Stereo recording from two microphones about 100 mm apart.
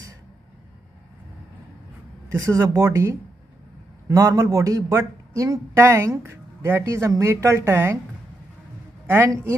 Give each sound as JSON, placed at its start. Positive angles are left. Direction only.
{"t": 2.4, "sound": "speech", "side_deg": -30}
{"t": 9.3, "sound": "a woman's voice", "side_deg": -30}